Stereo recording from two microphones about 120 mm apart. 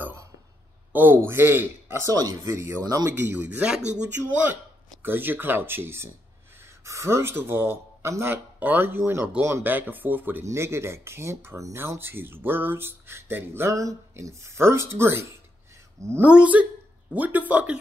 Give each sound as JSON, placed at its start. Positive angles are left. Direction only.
{"t": 0.0, "sound": "a sound", "side_deg": -20}
{"t": 0.9, "sound": "speech", "side_deg": -15}
{"t": 2.8, "sound": "speech", "side_deg": -35}
{"t": 3.1, "sound": "speech", "side_deg": -15}